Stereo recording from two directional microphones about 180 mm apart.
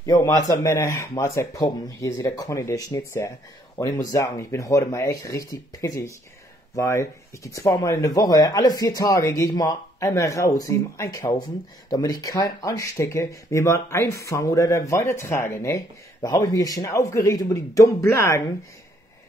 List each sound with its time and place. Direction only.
0.0 s speech: 20° left (ahead or behind)